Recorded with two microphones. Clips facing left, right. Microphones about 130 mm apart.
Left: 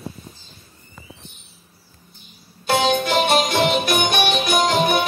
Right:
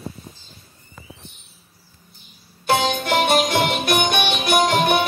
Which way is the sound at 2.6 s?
55° right (ahead or behind).